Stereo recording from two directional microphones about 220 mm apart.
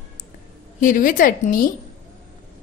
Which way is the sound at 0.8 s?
35° left (ahead or behind).